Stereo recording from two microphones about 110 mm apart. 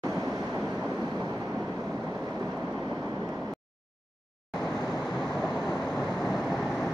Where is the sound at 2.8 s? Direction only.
30° right (ahead or behind).